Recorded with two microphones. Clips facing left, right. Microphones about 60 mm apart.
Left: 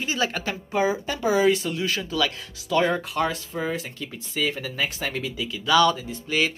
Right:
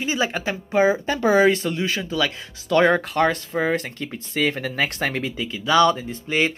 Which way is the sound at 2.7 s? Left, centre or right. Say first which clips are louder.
Right 5 dB; right.